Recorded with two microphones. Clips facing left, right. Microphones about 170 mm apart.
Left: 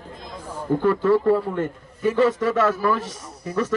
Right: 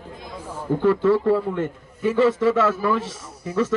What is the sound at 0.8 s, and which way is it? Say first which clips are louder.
A man's voice: right 1 dB; 45° left (ahead or behind).